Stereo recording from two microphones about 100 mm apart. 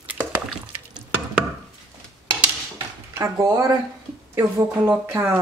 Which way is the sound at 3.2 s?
35° right (ahead or behind).